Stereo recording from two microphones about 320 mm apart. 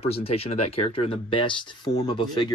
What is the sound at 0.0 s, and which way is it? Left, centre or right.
Speech, centre.